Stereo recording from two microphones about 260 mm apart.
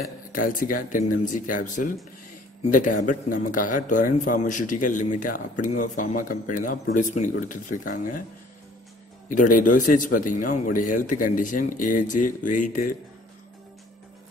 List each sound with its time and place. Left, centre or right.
0.3 s a man's voice: left
9.3 s a man's voice: left